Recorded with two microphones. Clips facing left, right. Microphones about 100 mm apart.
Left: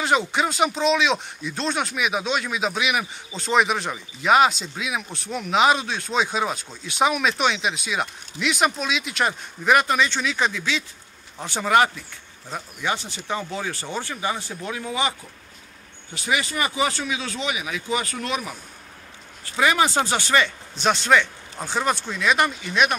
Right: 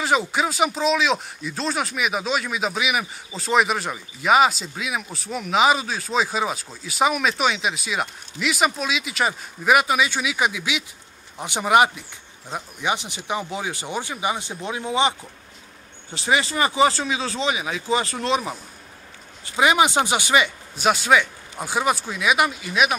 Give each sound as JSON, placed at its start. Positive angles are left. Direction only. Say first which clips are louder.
{"t": 0.0, "sound": "speech", "louder": "even", "side_deg": 0}
{"t": 16.2, "sound": "speech", "louder": "right 3 dB", "side_deg": -30}